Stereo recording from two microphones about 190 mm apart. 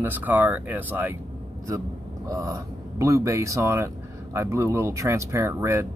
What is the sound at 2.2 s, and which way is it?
Speech, 15° right (ahead or behind).